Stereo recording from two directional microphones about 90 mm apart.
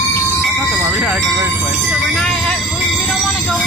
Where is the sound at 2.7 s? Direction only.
Centre (ahead or behind).